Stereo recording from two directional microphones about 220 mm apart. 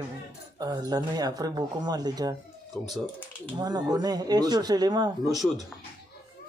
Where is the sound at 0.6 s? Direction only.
15° right (ahead or behind).